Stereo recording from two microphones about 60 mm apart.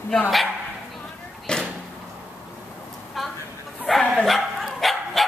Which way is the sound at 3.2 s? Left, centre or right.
Centre.